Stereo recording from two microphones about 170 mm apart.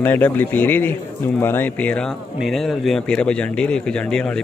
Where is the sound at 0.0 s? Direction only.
10° left (ahead or behind).